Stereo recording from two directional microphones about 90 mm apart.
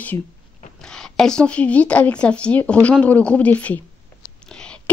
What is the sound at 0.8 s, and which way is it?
A woman's voice, 5° left (ahead or behind).